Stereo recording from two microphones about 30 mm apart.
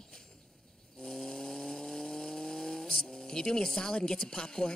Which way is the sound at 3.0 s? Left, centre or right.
Left.